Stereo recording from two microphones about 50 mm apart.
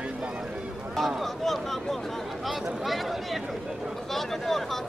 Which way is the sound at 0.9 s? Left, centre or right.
Centre.